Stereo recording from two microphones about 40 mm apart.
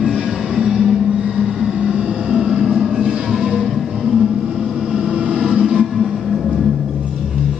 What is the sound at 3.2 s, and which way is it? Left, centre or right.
Music, centre.